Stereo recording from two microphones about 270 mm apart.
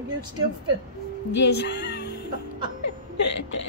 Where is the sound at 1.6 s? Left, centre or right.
Left.